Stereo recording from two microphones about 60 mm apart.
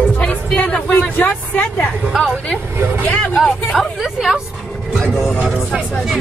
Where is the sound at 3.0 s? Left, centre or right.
Left.